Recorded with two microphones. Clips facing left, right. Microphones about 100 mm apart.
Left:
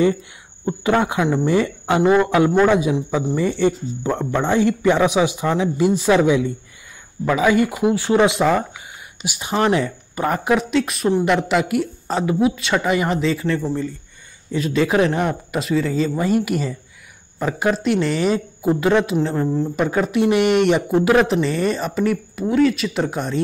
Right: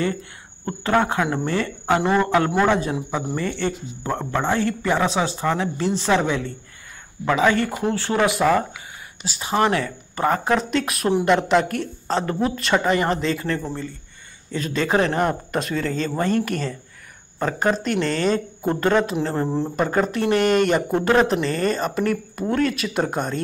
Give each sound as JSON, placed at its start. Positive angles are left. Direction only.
{"t": 0.7, "sound": "speech", "side_deg": 15}
{"t": 10.2, "sound": "speech", "side_deg": 10}